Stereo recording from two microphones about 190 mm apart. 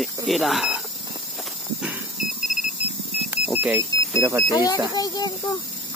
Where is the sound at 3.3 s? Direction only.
10° right (ahead or behind).